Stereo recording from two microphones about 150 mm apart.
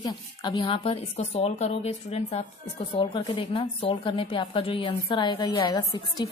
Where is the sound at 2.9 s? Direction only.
30° left (ahead or behind).